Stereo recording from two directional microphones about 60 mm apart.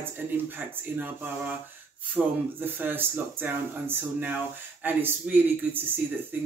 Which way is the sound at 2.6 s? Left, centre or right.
Right.